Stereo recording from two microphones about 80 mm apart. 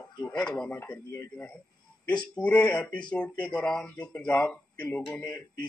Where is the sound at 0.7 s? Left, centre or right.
Left.